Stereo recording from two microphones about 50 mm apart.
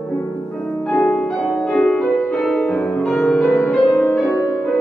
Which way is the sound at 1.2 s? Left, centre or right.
Centre.